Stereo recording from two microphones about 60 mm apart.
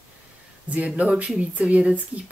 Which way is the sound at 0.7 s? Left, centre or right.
Right.